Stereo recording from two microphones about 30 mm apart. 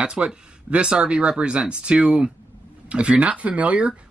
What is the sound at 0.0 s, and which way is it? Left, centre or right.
Speech, right.